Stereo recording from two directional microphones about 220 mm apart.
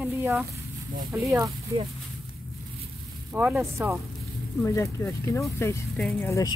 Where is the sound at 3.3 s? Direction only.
5° right (ahead or behind).